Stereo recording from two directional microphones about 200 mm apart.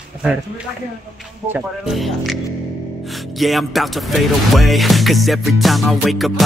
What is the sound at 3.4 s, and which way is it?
Speech, centre (ahead or behind).